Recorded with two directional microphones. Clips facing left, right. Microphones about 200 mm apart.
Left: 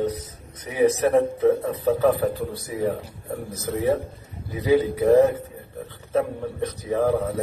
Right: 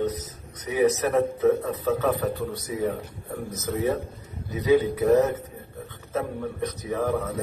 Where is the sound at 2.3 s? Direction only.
40° left (ahead or behind).